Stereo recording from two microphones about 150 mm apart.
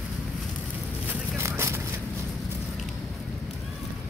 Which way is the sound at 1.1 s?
20° right (ahead or behind).